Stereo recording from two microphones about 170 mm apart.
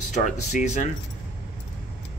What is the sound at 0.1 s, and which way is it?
Speech, 50° left (ahead or behind).